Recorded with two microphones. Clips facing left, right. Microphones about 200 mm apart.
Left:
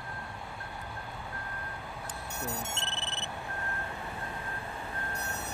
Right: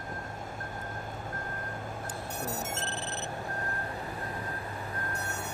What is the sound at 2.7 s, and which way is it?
Clock, 40° right (ahead or behind).